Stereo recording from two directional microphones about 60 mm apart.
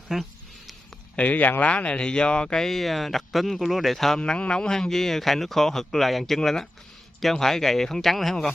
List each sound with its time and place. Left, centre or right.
0.1 s speech: centre
1.1 s speech: left; by 4.2 s centre
4.2 s speech: centre